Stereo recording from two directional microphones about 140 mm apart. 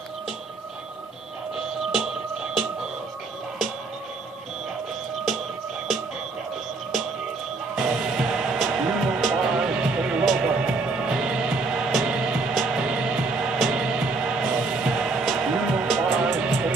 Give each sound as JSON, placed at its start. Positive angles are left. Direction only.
{"t": 7.7, "sound": "music", "side_deg": 0}